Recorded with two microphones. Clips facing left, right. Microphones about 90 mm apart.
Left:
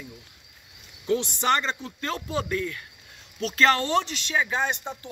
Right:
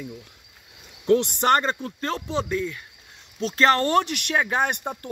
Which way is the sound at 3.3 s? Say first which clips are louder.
Right 2 dB; 35° right (ahead or behind).